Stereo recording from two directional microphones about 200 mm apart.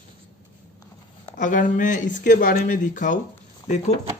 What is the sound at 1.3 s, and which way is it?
Speech, 40° left (ahead or behind).